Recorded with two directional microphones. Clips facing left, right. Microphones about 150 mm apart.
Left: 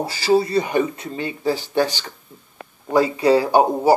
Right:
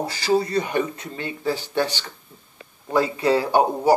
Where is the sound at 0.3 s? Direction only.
10° left (ahead or behind).